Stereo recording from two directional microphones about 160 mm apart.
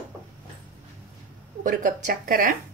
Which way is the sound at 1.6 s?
55° right (ahead or behind).